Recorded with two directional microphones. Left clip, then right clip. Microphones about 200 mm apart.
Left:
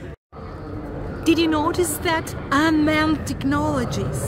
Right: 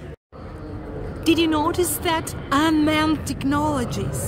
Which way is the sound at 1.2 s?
5° right (ahead or behind).